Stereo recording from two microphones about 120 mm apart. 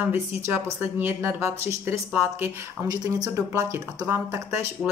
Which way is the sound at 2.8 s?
35° right (ahead or behind).